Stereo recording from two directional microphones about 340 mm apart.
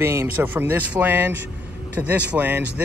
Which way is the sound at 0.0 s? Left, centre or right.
Centre.